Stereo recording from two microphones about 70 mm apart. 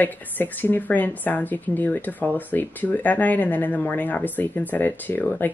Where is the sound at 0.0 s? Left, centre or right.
Left.